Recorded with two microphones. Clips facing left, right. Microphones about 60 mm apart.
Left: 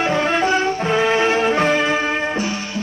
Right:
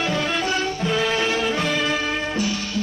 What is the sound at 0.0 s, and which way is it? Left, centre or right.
Music, left.